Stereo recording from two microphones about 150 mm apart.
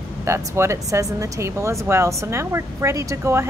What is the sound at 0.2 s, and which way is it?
A woman's voice, 20° right (ahead or behind).